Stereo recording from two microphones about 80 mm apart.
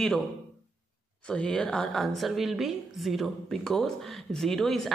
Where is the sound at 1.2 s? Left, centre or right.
Centre.